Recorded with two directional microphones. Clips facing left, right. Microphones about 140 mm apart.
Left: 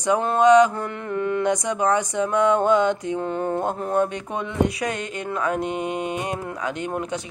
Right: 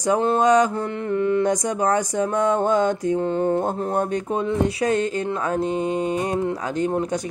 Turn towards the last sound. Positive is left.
turn(degrees=-35)  # may be behind; listen again after turning